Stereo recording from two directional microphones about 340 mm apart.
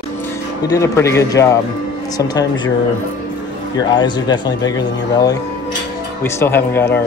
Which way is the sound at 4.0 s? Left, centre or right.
Centre.